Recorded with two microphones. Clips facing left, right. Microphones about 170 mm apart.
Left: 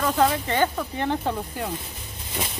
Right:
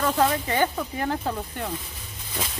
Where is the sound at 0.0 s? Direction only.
Centre (ahead or behind).